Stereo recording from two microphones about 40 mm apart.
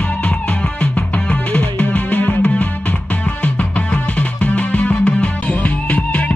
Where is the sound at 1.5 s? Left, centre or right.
Left.